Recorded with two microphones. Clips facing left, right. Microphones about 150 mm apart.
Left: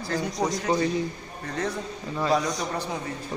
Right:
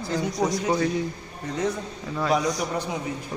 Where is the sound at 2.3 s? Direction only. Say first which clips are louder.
Right 3 dB; 15° right (ahead or behind).